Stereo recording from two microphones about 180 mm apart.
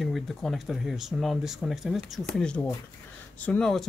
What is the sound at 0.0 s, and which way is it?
Speech, centre (ahead or behind).